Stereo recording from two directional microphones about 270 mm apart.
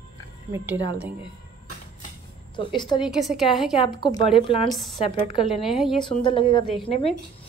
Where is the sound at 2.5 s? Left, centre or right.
Centre.